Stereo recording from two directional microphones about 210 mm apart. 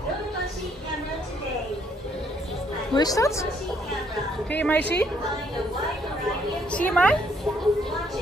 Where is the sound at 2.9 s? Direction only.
15° left (ahead or behind).